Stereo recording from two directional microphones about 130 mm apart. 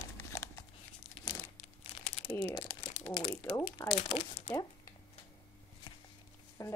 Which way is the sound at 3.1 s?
50° left (ahead or behind).